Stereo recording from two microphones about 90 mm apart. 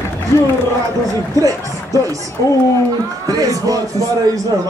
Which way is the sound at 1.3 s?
40° right (ahead or behind).